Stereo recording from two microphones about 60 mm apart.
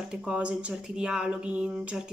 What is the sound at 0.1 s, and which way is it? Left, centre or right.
Speech, centre.